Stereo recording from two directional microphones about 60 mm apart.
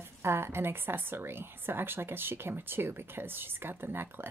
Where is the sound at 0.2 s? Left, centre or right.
Right.